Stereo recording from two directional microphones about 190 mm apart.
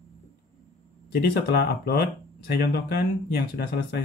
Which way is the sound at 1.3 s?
55° left (ahead or behind).